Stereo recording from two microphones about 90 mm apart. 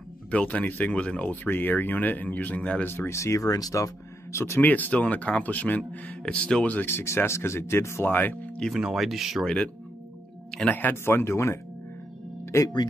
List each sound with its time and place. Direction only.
0.3 s speech: 15° left (ahead or behind)
2.9 s speech: 30° left (ahead or behind)
4.6 s speech: 20° left (ahead or behind)
8.6 s speech: 5° right (ahead or behind)
10.5 s music: 10° left (ahead or behind)
10.8 s speech: 25° left (ahead or behind)
12.4 s music: 40° left (ahead or behind)